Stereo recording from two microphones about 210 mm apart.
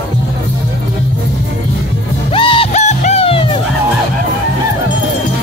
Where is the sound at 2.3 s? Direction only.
25° left (ahead or behind).